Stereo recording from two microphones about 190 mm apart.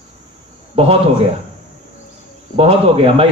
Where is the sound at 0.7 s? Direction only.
30° right (ahead or behind).